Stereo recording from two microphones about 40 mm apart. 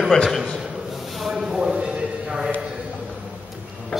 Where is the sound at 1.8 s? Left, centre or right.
Right.